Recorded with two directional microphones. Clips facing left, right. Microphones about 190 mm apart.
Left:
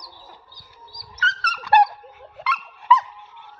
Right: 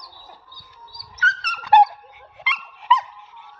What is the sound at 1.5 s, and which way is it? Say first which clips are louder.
Dog: right 2 dB; 20° right (ahead or behind).